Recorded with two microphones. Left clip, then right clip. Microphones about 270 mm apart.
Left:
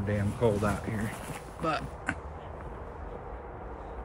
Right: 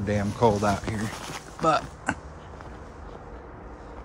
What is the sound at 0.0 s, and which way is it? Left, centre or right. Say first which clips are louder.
Speech: right 6 dB; centre.